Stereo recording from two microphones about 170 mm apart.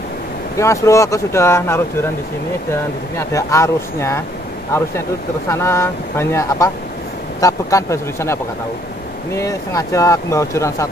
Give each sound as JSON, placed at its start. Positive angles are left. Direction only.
{"t": 0.6, "sound": "speech", "side_deg": 15}
{"t": 5.5, "sound": "speech", "side_deg": 15}